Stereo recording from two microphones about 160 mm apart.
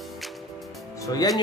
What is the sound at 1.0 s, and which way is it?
Speech, 20° left (ahead or behind).